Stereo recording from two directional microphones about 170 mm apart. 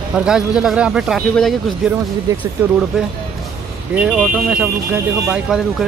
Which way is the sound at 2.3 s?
20° right (ahead or behind).